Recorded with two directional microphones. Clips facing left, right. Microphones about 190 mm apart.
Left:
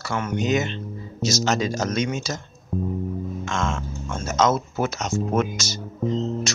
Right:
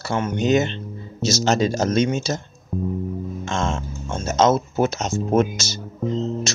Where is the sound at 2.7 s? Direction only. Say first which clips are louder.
Right 1 dB; 5° right (ahead or behind).